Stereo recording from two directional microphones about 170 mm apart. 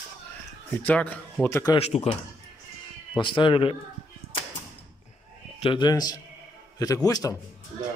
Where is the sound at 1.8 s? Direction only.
40° left (ahead or behind).